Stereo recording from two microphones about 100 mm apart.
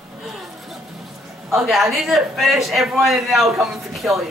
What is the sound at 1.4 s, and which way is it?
A man's voice, 5° right (ahead or behind).